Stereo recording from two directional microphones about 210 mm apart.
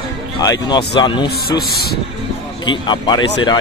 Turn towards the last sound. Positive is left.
turn(degrees=20)  # may be behind; listen again after turning